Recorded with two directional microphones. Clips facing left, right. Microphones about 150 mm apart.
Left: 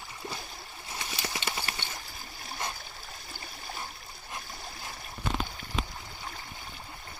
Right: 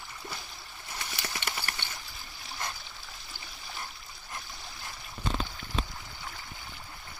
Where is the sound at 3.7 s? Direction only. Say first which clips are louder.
Even; 20° left (ahead or behind).